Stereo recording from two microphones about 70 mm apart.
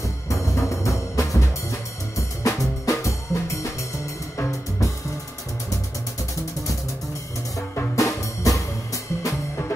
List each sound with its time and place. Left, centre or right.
0.3 s timpani: left
2.1 s drum kit: left
4.4 s music: left
7.5 s music: left